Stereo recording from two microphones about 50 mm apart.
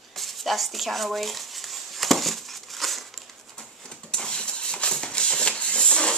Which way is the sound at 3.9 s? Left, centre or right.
Centre.